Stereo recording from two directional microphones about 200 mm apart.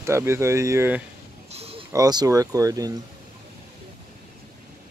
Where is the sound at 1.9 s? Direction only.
20° right (ahead or behind).